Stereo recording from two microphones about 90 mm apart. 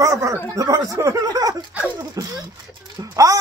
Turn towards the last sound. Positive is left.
turn(degrees=-35)  # may be behind; listen again after turning